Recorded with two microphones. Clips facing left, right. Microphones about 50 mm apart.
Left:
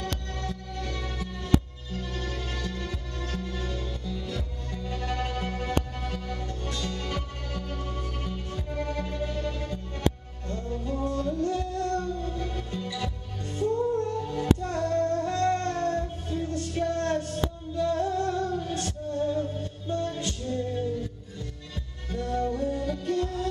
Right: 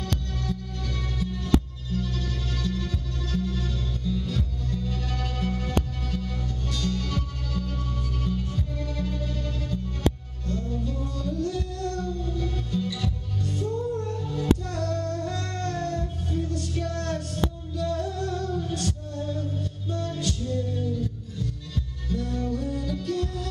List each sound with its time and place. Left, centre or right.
1.2 s music: left